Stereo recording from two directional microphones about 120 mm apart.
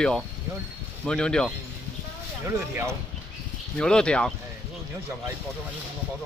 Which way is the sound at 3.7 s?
5° left (ahead or behind).